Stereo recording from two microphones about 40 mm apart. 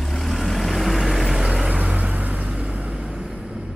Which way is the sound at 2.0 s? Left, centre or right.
Right.